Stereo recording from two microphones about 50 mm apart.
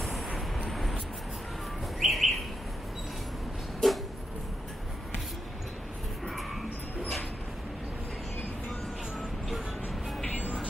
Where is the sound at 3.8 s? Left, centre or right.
Centre.